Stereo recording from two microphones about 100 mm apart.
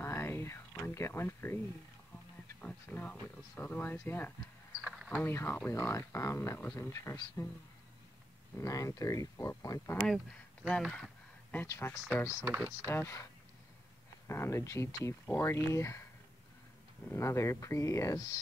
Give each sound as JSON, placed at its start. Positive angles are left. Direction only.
{"t": 0.0, "sound": "a sound", "side_deg": 25}
{"t": 2.6, "sound": "speech", "side_deg": 15}
{"t": 8.5, "sound": "speech", "side_deg": 35}
{"t": 10.0, "sound": "speech", "side_deg": 0}
{"t": 11.6, "sound": "speech", "side_deg": 30}
{"t": 17.1, "sound": "speech", "side_deg": 30}